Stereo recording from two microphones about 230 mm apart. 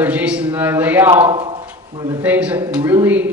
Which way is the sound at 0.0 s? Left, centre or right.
Centre.